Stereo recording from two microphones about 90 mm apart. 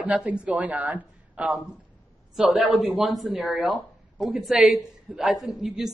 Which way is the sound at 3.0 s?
Centre (ahead or behind).